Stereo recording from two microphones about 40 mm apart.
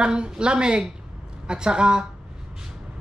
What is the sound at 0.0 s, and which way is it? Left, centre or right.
Speech, right.